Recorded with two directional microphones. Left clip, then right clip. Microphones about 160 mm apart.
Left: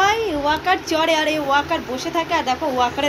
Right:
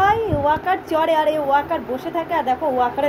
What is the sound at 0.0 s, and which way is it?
A woman's voice, 5° right (ahead or behind).